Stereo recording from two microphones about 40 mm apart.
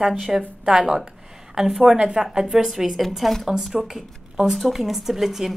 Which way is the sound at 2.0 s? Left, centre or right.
Centre.